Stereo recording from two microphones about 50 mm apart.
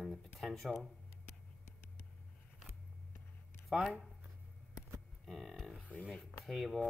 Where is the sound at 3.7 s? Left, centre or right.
Centre.